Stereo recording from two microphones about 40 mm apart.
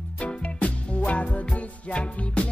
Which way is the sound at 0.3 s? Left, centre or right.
Left.